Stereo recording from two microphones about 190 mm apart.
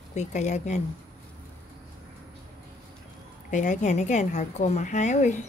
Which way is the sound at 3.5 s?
40° left (ahead or behind).